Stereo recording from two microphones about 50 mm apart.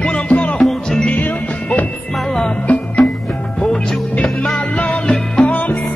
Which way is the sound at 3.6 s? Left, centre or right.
Centre.